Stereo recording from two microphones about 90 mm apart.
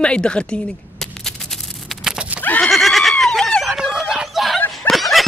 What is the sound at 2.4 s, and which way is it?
Neigh, 20° left (ahead or behind).